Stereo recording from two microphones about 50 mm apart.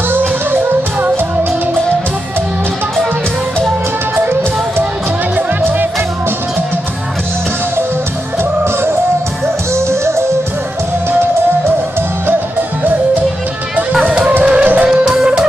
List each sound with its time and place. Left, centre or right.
0.1 s music: right
9.8 s music: right
14.4 s music: right
15.0 s music: centre